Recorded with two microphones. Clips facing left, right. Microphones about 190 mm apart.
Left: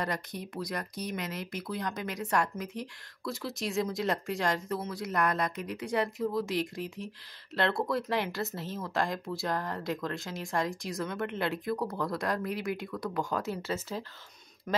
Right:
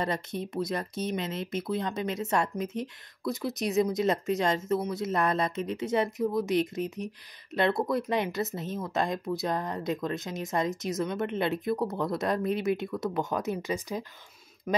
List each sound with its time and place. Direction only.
0.0 s speech: 25° right (ahead or behind)